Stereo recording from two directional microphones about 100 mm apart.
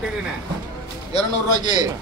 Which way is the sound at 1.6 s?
45° right (ahead or behind).